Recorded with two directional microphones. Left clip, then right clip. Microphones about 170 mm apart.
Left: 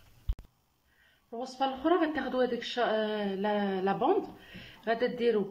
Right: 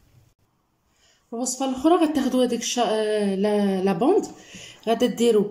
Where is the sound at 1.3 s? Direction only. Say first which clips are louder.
Right 5 dB; 15° right (ahead or behind).